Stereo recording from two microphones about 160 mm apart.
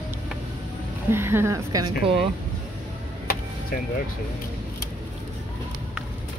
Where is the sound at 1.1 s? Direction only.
15° right (ahead or behind).